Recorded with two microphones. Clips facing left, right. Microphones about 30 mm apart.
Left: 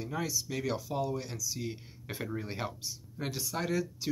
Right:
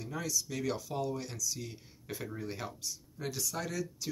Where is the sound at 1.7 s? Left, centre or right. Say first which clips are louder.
Left 3 dB; left.